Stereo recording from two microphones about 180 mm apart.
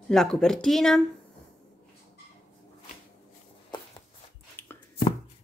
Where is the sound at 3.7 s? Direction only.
25° left (ahead or behind).